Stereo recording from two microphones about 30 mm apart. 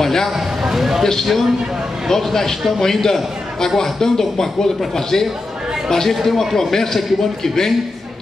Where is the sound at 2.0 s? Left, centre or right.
Centre.